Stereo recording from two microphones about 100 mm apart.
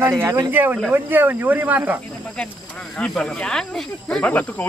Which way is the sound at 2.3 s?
10° left (ahead or behind).